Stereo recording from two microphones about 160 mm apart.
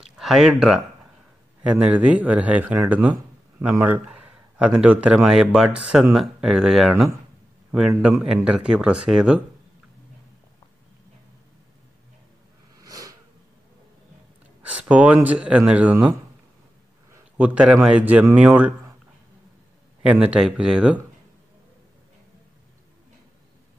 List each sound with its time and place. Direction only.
0.0 s speech: 5° right (ahead or behind)
7.9 s speech: 15° right (ahead or behind)
8.3 s speech: 5° right (ahead or behind)
12.7 s a sound: 20° right (ahead or behind)
14.6 s speech: 10° right (ahead or behind)
17.4 s speech: 10° right (ahead or behind)
20.0 s speech: 10° right (ahead or behind)